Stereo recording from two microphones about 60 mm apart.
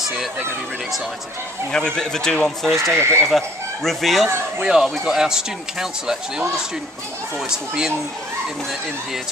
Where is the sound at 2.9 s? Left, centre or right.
Right.